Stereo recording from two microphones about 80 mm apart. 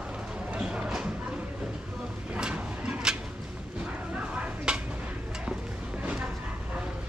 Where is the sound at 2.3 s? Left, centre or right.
Centre.